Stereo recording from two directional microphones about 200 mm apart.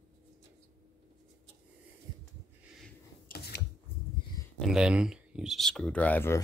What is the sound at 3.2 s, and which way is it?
Scissors, 50° left (ahead or behind).